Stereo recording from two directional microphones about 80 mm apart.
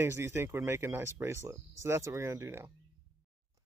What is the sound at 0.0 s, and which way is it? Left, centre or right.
Speech, right.